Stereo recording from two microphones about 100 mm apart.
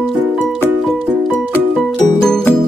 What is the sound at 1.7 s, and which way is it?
Music, 5° left (ahead or behind).